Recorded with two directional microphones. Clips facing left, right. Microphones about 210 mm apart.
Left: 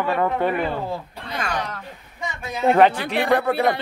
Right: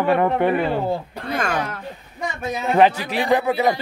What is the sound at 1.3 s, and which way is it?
Speech, 50° right (ahead or behind).